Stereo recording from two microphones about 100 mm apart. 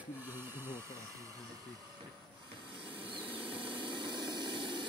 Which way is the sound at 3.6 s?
50° right (ahead or behind).